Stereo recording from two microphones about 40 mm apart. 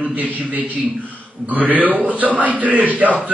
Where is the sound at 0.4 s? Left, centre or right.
Right.